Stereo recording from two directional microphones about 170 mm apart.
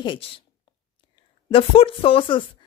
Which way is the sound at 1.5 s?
30° left (ahead or behind).